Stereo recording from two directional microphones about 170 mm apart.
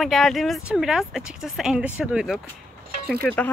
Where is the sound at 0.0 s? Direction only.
Centre (ahead or behind).